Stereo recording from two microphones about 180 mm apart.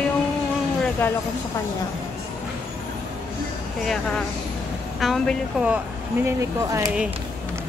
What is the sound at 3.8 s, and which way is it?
Speech, 5° left (ahead or behind).